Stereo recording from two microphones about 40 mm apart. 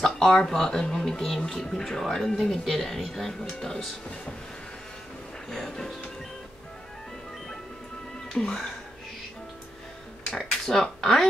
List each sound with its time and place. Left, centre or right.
0.0 s speech: centre
5.5 s speech: centre
8.3 s speech: centre
10.3 s speech: centre